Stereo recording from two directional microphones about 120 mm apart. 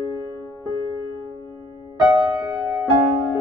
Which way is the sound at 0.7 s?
25° left (ahead or behind).